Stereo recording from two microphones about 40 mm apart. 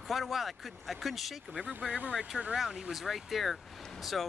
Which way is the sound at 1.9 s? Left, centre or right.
Right.